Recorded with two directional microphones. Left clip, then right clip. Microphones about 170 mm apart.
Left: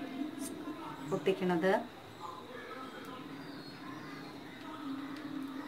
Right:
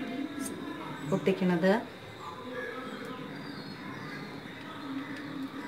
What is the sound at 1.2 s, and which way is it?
Speech, 30° left (ahead or behind).